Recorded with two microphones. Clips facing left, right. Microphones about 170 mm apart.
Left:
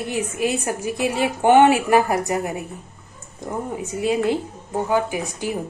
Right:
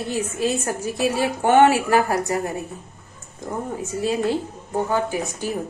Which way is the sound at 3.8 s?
15° left (ahead or behind).